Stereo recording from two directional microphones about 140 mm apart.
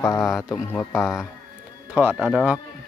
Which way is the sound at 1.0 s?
Centre (ahead or behind).